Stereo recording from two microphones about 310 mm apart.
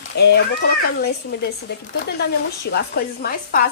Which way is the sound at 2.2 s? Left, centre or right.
Left.